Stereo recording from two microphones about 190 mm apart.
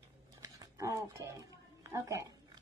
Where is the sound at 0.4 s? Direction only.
15° right (ahead or behind).